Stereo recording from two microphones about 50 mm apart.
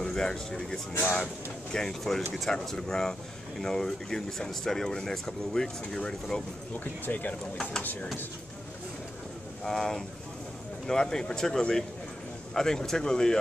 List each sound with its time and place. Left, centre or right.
0.0 s speech: centre
1.0 s speech: left
1.7 s speech: centre
6.8 s speech: left
9.6 s speech: centre